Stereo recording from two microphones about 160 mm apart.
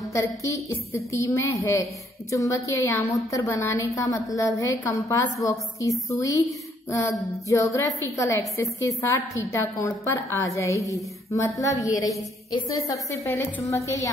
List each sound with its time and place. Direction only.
0.1 s a woman's voice: 20° left (ahead or behind)